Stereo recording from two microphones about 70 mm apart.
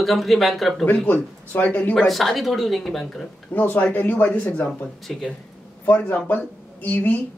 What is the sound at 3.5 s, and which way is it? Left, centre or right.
Speech, left.